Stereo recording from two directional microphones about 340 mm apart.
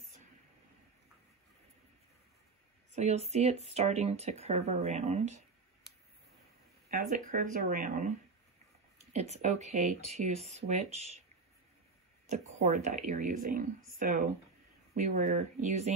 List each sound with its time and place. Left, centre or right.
2.9 s speech: centre
6.9 s speech: right
9.1 s speech: centre
12.3 s speech: centre